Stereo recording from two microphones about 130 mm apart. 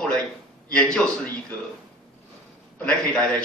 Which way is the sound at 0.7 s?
5° left (ahead or behind).